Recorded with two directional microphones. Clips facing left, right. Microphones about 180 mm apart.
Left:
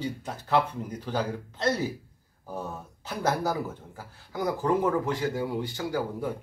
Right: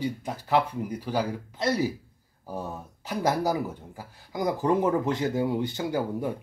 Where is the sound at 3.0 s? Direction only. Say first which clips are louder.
Right 2 dB; 15° right (ahead or behind).